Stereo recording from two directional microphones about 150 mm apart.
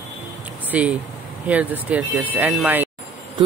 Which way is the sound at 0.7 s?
10° right (ahead or behind).